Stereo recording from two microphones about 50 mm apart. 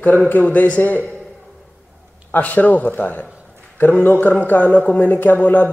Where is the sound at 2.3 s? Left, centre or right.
Left.